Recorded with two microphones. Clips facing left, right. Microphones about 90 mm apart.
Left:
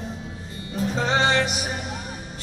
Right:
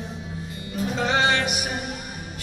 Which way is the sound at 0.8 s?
30° left (ahead or behind).